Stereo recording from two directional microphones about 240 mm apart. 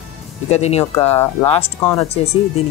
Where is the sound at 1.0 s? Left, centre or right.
Centre.